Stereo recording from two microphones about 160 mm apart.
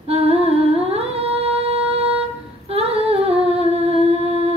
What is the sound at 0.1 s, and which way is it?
Humming, 40° right (ahead or behind).